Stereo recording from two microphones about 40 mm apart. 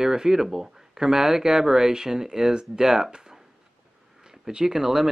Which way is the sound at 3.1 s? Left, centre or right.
Centre.